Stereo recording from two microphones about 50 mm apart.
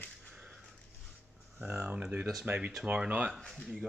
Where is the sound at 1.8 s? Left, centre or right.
Right.